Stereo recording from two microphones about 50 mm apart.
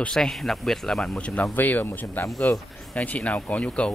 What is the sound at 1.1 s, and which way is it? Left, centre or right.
Speech, left.